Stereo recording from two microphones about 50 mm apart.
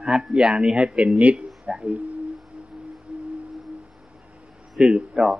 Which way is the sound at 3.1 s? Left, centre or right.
Centre.